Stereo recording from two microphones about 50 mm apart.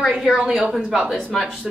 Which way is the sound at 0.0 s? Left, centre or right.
Centre.